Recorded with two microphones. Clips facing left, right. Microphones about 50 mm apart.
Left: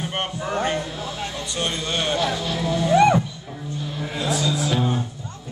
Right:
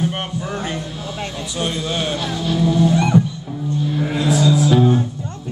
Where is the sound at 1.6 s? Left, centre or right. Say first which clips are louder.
Right 3 dB; centre.